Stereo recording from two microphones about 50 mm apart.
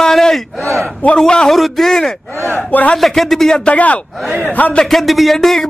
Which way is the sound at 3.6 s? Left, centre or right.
Left.